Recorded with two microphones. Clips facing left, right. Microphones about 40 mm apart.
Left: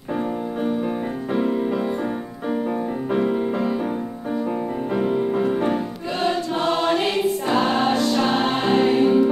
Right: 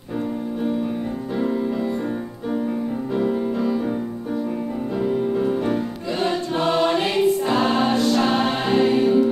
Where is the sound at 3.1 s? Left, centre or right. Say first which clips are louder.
Left 1 dB; left.